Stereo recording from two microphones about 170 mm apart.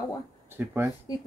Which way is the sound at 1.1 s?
25° left (ahead or behind).